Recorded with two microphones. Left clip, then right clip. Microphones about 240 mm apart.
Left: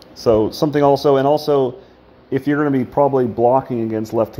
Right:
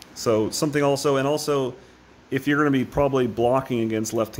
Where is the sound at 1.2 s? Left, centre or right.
Centre.